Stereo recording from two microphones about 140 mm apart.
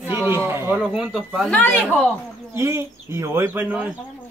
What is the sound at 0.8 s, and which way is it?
Speech, 5° right (ahead or behind).